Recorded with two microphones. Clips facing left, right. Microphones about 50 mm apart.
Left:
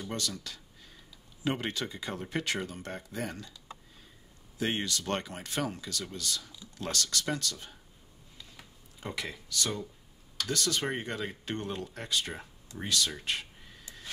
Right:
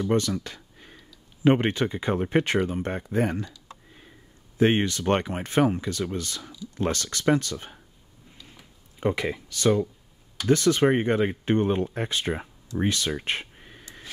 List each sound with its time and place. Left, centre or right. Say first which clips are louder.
0.0 s speech: right 12 dB; right
4.6 s speech: right 11 dB; right
9.0 s speech: right 12 dB; right
12.7 s a sound: right 6 dB; right